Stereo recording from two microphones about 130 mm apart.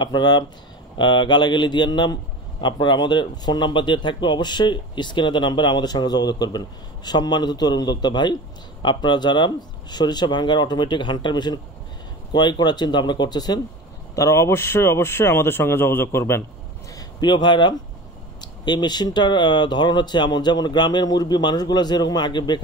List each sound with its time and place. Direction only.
0.0 s speech: 35° left (ahead or behind)
16.9 s speech: 35° left (ahead or behind)